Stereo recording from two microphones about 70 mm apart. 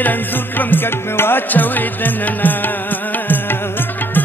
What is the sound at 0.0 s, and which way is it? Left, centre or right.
Music, left.